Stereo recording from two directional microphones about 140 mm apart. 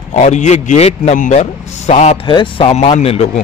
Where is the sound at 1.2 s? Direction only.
65° left (ahead or behind).